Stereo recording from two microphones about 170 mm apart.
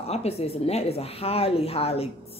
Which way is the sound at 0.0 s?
35° left (ahead or behind).